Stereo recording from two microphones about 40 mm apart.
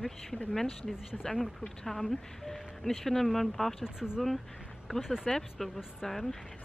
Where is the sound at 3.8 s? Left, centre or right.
Centre.